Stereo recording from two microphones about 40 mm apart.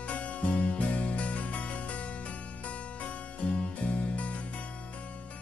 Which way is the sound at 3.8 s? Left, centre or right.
Left.